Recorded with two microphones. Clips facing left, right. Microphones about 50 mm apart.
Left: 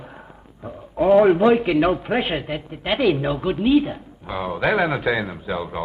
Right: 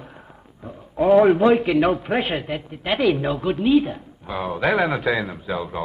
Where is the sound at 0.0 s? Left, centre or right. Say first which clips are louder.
Left 2 dB; centre.